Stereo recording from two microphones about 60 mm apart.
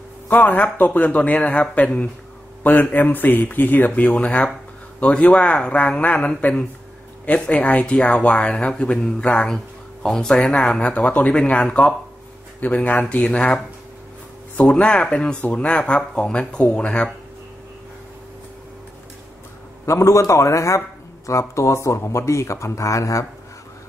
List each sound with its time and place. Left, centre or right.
0.3 s speech: left
14.6 s speech: centre
19.9 s speech: left